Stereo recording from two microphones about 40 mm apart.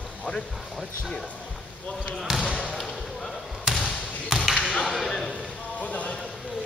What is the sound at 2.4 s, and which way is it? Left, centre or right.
Basketball bounce, right.